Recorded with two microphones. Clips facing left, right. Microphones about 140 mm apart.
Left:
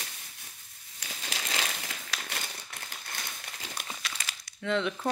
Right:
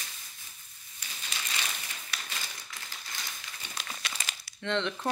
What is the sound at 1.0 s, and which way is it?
Crumpling, 90° left.